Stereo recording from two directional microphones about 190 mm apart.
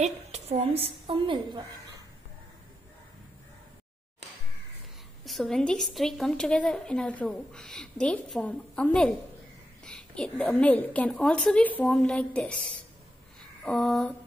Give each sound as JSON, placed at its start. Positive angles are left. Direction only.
{"t": 0.0, "sound": "a woman's voice", "side_deg": -35}
{"t": 5.2, "sound": "a woman's voice", "side_deg": 0}
{"t": 13.7, "sound": "a woman's voice", "side_deg": 0}